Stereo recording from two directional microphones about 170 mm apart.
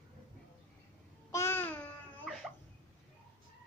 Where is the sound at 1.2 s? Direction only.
15° left (ahead or behind).